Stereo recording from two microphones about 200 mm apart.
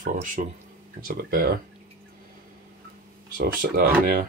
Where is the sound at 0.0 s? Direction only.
40° right (ahead or behind).